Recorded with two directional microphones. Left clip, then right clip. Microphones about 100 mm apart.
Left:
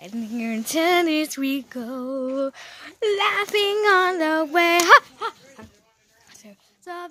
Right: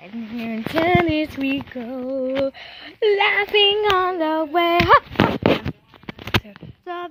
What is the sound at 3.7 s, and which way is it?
Female singing, 50° left (ahead or behind).